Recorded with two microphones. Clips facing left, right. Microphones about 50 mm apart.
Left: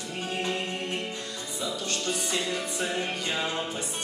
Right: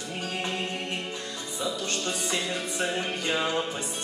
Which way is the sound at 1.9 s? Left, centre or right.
Right.